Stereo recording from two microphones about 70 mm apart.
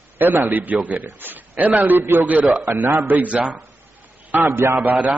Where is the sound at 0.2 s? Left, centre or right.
Right.